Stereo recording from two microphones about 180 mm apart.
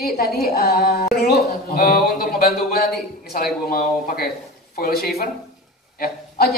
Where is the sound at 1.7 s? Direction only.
55° left (ahead or behind).